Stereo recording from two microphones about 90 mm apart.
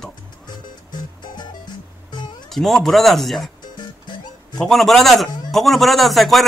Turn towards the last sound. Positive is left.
turn(degrees=0)  # may be behind; listen again after turning